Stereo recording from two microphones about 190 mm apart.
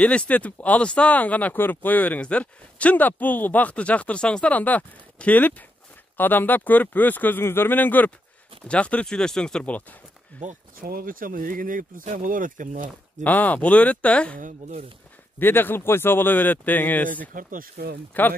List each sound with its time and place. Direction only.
0.0 s speech: 5° left (ahead or behind)
10.4 s speech: 50° right (ahead or behind)
13.2 s speech: 10° left (ahead or behind)
14.4 s speech: 40° right (ahead or behind)
15.3 s speech: 10° left (ahead or behind)
17.3 s speech: 45° right (ahead or behind)
18.1 s speech: 10° left (ahead or behind)